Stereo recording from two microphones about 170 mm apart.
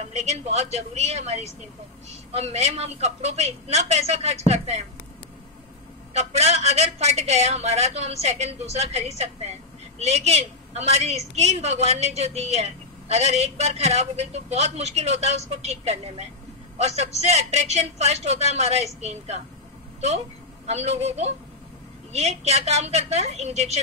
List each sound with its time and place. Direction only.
0.0 s a woman's voice: 40° right (ahead or behind)
6.1 s a woman's voice: 40° right (ahead or behind)
20.6 s a woman's voice: 40° right (ahead or behind)